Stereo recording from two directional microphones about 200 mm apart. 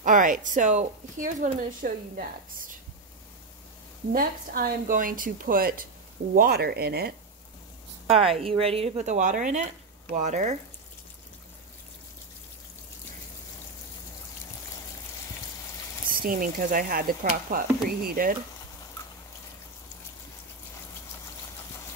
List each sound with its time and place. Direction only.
0.0 s speech: 40° right (ahead or behind)
4.1 s a woman's voice: 45° right (ahead or behind)
8.1 s speech: 30° right (ahead or behind)
16.1 s a woman's voice: 45° right (ahead or behind)